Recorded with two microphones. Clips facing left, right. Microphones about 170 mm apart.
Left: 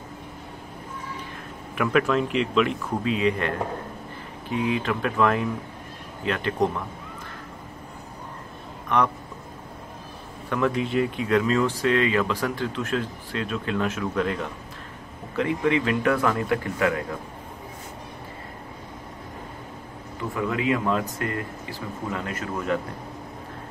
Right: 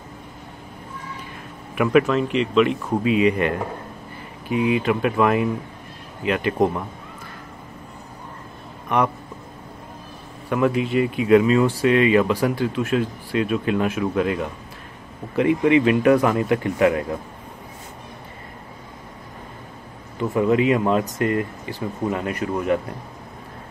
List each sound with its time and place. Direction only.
1.8 s speech: 5° right (ahead or behind)
8.8 s speech: 10° right (ahead or behind)
10.5 s speech: 10° right (ahead or behind)
20.2 s speech: 20° right (ahead or behind)